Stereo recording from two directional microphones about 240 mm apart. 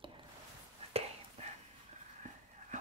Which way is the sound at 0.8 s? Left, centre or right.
Right.